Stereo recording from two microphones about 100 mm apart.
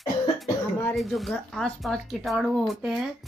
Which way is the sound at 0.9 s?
Centre (ahead or behind).